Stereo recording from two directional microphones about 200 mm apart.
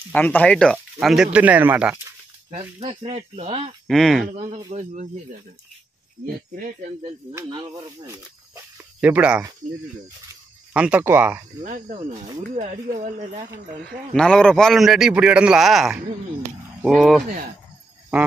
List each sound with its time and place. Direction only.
0.1 s speech: 10° left (ahead or behind); by 2.0 s 10° right (ahead or behind)
2.8 s speech: 25° right (ahead or behind)
3.8 s a man's voice: centre (ahead or behind)
4.7 s speech: 30° right (ahead or behind)
6.5 s speech: 45° right (ahead or behind)
7.6 s speech: 15° right (ahead or behind)
10.7 s speech: 5° right (ahead or behind)
11.6 s speech: 40° right (ahead or behind)
14.1 s a man's voice: 5° left (ahead or behind)